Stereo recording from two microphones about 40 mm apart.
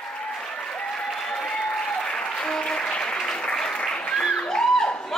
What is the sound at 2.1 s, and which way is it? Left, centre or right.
Applause, centre.